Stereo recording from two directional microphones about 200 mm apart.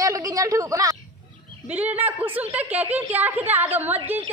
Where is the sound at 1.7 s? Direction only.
10° right (ahead or behind).